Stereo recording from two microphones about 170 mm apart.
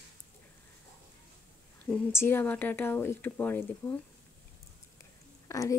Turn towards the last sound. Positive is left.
turn(degrees=20)  # may be behind; listen again after turning